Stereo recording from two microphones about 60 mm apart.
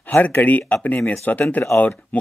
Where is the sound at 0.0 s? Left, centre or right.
Left.